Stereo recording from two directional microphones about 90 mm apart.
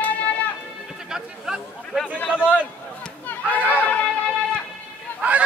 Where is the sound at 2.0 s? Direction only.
15° left (ahead or behind).